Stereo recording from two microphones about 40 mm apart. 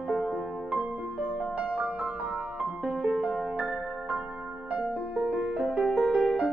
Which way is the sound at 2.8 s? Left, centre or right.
Centre.